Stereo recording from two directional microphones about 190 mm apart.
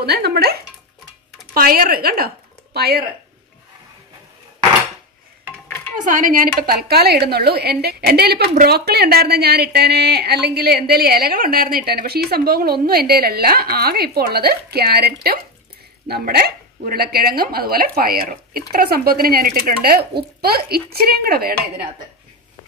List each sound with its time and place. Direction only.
0.0 s a woman's voice: 55° right (ahead or behind)
5.9 s a woman's voice: 45° right (ahead or behind)